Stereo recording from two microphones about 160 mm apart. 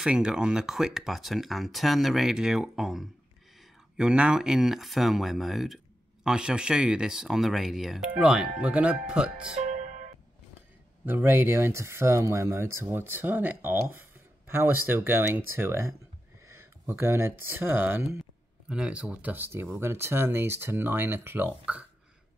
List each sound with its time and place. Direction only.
0.0 s speech: 5° right (ahead or behind)
9.6 s music: 45° right (ahead or behind)
11.1 s speech: 10° right (ahead or behind)